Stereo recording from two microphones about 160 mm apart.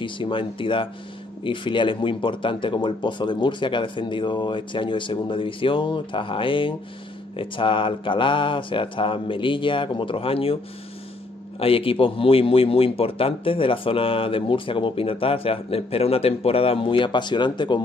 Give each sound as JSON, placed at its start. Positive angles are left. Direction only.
{"t": 0.0, "sound": "a man's voice", "side_deg": 30}
{"t": 11.6, "sound": "a man's voice", "side_deg": 35}